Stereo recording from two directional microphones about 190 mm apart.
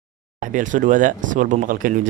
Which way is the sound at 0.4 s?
40° right (ahead or behind).